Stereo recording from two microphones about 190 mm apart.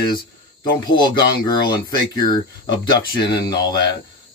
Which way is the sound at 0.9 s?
25° left (ahead or behind).